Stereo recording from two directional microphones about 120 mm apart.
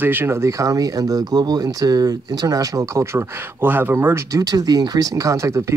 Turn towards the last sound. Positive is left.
turn(degrees=-25)  # may be behind; listen again after turning